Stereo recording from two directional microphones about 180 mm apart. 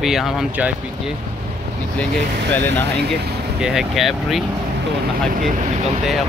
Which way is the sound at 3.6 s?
Centre (ahead or behind).